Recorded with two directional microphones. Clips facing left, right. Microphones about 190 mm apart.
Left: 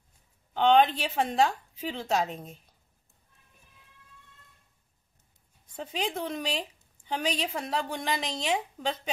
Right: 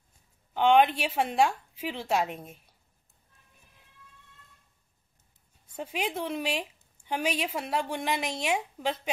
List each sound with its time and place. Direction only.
0.6 s a woman's voice: 10° right (ahead or behind)
5.8 s a woman's voice: 10° right (ahead or behind)